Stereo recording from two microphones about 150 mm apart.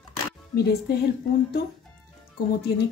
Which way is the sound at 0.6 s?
90° left.